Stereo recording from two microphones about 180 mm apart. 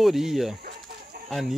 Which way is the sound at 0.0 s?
Centre (ahead or behind).